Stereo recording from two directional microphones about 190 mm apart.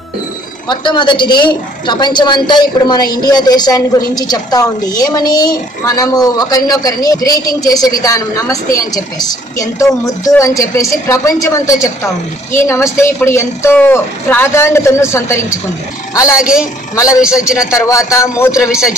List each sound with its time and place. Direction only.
0.7 s a woman's voice: 25° left (ahead or behind)
16.9 s a man's voice: 15° left (ahead or behind)
17.2 s a man's voice: 5° right (ahead or behind)
17.6 s a man's voice: 15° left (ahead or behind)
18.6 s a man's voice: 5° right (ahead or behind)